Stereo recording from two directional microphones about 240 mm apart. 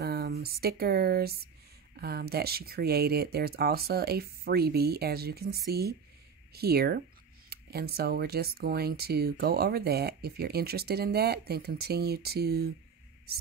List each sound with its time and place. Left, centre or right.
0.0 s speech: right